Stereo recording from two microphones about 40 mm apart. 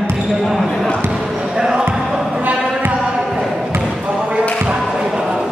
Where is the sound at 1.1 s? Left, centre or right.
Centre.